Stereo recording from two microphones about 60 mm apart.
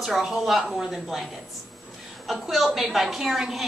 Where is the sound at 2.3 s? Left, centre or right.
Centre.